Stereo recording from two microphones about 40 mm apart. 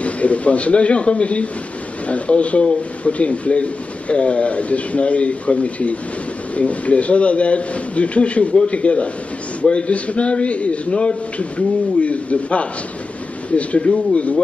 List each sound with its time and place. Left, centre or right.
0.0 s a man's voice: left